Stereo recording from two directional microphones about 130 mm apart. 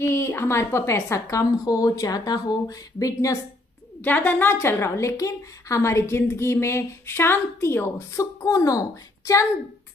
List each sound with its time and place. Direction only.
0.0 s a woman's voice: 20° left (ahead or behind)
4.0 s a woman's voice: 15° left (ahead or behind)